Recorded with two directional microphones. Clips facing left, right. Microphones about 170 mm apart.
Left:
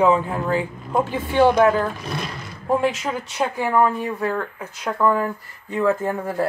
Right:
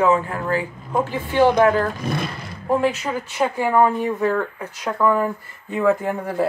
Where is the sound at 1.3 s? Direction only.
10° right (ahead or behind).